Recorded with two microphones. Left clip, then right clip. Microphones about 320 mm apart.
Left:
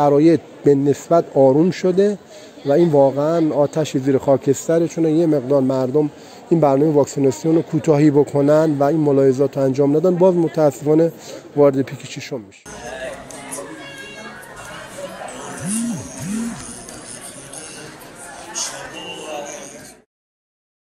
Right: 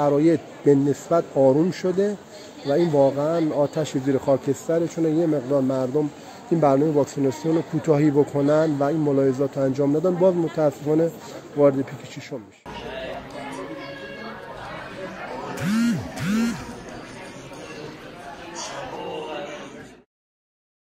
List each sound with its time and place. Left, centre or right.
0.0 s speech: left